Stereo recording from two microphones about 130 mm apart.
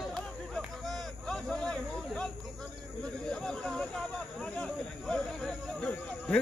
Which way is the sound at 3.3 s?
5° left (ahead or behind).